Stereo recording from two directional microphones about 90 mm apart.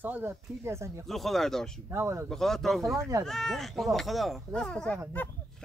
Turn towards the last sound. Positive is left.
turn(degrees=10)  # may be behind; listen again after turning